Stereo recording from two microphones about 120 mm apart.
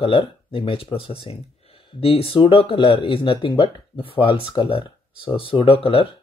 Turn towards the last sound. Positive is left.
turn(degrees=50)  # may be behind; listen again after turning